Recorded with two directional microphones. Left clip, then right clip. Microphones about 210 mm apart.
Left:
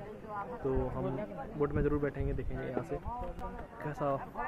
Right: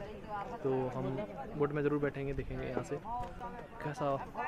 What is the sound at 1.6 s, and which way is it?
Speech, 10° right (ahead or behind).